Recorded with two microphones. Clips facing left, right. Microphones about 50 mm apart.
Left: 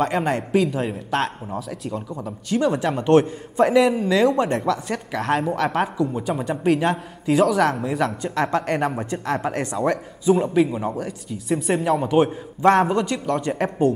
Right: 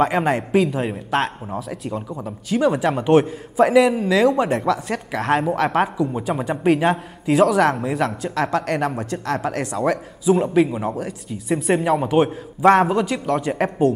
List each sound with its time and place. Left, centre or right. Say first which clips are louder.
0.0 s a man's voice: right 3 dB; centre